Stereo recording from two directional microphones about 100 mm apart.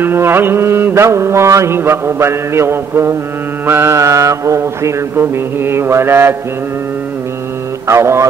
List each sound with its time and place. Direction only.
0.0 s mantra: 25° right (ahead or behind)
7.9 s mantra: 25° right (ahead or behind)